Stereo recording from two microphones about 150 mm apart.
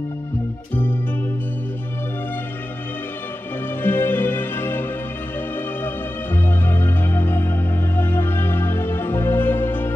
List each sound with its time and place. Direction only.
3.8 s music: 15° left (ahead or behind)
6.3 s music: 15° left (ahead or behind)